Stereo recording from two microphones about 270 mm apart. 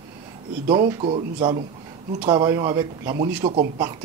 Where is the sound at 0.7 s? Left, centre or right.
Centre.